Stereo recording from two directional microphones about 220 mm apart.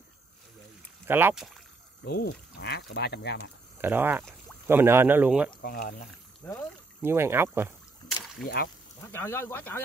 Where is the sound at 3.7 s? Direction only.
10° right (ahead or behind).